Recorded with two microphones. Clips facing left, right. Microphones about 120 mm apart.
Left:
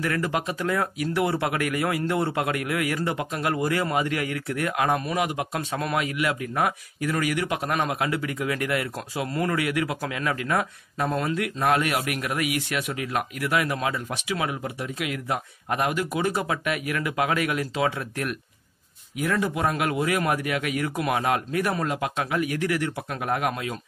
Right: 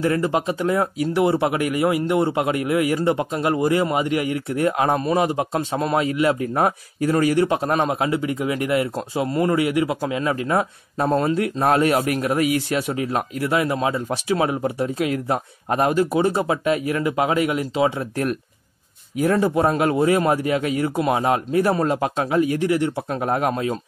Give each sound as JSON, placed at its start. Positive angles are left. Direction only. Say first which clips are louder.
{"t": 0.0, "sound": "speech", "louder": "right 6 dB", "side_deg": -25}
{"t": 19.1, "sound": "a man's voice", "louder": "right 7 dB", "side_deg": -35}